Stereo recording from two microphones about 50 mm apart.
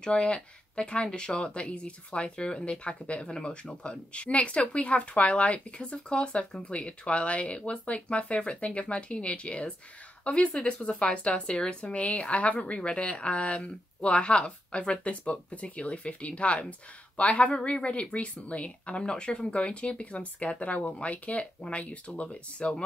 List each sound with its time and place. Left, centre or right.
0.0 s speech: centre